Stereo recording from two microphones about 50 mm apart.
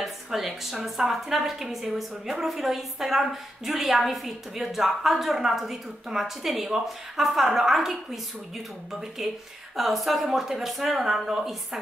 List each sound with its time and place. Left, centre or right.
0.0 s a woman's voice: centre
9.2 s a woman's voice: centre